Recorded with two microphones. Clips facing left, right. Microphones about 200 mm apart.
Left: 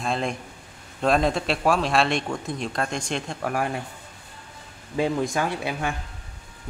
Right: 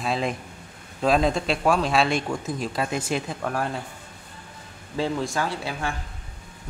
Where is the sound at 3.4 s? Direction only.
10° left (ahead or behind).